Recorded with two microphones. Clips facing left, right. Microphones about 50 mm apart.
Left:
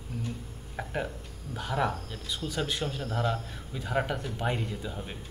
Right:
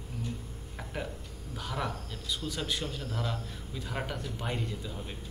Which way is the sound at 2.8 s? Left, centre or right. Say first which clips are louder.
Left 5 dB; centre.